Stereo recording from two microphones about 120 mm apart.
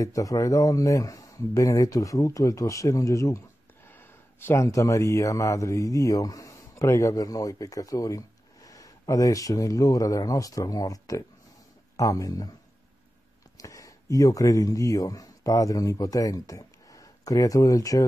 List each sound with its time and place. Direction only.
0.0 s speech: 30° left (ahead or behind)
13.6 s speech: 30° left (ahead or behind)